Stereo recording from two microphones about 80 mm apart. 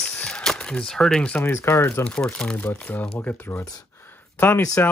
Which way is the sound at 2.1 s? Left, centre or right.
Centre.